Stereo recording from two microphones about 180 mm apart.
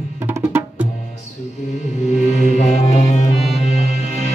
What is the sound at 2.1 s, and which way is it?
Music, 40° left (ahead or behind).